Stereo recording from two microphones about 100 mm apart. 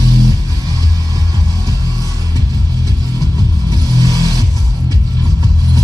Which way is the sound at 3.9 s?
40° right (ahead or behind).